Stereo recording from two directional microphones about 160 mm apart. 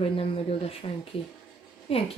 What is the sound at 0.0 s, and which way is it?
Speech, 35° left (ahead or behind).